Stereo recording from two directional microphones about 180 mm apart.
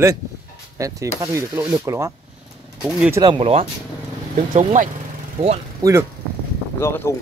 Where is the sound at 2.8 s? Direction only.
5° right (ahead or behind).